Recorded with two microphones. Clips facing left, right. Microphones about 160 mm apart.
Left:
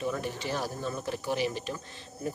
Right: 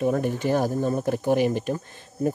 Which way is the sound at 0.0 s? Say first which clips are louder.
Right 9 dB; 50° right (ahead or behind).